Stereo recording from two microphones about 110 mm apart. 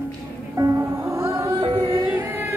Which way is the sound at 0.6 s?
35° right (ahead or behind).